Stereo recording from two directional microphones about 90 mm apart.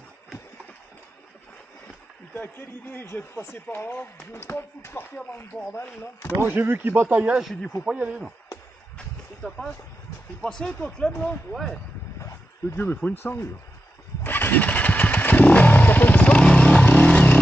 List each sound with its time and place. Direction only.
2.3 s speech: 20° left (ahead or behind)
6.4 s speech: 25° right (ahead or behind)
7.3 s speech: centre (ahead or behind)
7.8 s speech: 10° right (ahead or behind)
10.4 s speech: 5° left (ahead or behind)
11.5 s speech: centre (ahead or behind)
12.2 s dog: 35° left (ahead or behind)
12.8 s speech: 20° left (ahead or behind)
14.2 s motorcycle: 20° left (ahead or behind)